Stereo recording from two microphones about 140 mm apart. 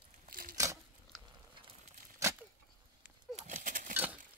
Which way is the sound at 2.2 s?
20° right (ahead or behind).